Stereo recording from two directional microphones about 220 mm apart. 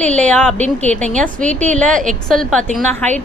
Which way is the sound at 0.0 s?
30° right (ahead or behind).